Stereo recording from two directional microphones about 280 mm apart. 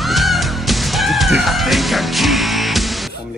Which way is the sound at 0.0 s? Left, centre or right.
Centre.